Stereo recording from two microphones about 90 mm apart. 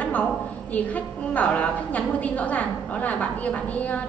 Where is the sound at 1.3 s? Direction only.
15° left (ahead or behind).